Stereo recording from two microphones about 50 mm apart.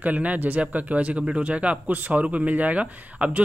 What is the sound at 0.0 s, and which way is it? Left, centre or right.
Speech, right.